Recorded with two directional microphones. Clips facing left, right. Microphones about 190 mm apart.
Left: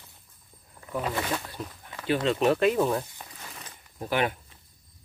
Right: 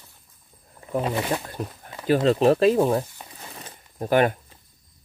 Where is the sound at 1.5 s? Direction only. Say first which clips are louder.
Right 6 dB; 45° right (ahead or behind).